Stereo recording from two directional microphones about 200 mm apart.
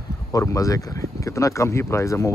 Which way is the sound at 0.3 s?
15° left (ahead or behind).